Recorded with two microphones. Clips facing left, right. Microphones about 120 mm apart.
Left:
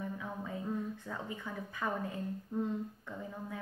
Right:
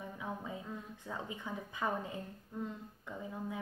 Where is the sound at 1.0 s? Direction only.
15° right (ahead or behind).